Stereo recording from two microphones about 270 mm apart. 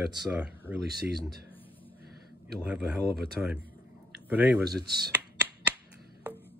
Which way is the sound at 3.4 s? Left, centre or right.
Centre.